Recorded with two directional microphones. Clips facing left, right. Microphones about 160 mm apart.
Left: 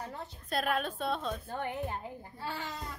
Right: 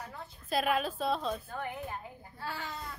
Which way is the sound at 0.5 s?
Centre (ahead or behind).